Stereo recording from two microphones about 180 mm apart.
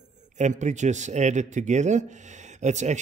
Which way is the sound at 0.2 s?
40° right (ahead or behind).